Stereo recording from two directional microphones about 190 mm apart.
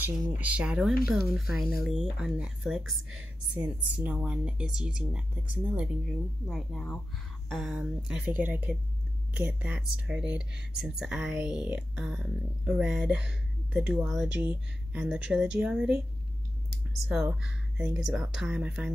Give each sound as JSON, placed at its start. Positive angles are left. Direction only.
{"t": 0.4, "sound": "speech", "side_deg": -5}
{"t": 17.1, "sound": "speech", "side_deg": -5}